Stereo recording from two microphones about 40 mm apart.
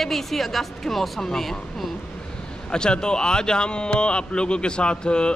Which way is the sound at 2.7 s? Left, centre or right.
Left.